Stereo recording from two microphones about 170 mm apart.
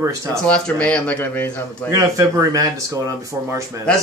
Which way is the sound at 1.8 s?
20° right (ahead or behind).